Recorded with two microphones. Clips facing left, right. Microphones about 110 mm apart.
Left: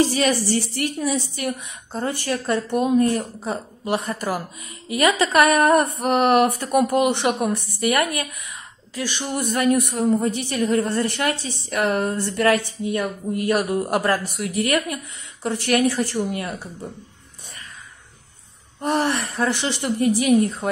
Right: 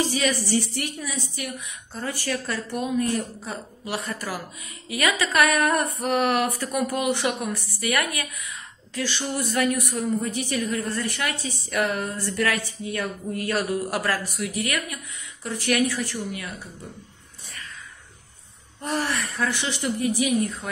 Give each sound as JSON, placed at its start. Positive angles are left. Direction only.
{"t": 0.5, "sound": "a woman's voice", "side_deg": 40}
{"t": 2.0, "sound": "a woman's voice", "side_deg": 25}
{"t": 3.0, "sound": "a woman's voice", "side_deg": 40}
{"t": 5.9, "sound": "a woman's voice", "side_deg": 25}
{"t": 8.9, "sound": "a woman's voice", "side_deg": 15}
{"t": 9.7, "sound": "a woman's voice", "side_deg": 30}
{"t": 10.0, "sound": "a woman's voice", "side_deg": 40}
{"t": 12.9, "sound": "a woman's voice", "side_deg": 20}
{"t": 14.4, "sound": "a woman's voice", "side_deg": 40}
{"t": 18.8, "sound": "a woman's voice", "side_deg": 25}